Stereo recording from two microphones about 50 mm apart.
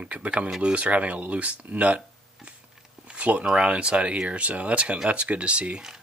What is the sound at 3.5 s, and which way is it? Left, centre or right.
Speech, right.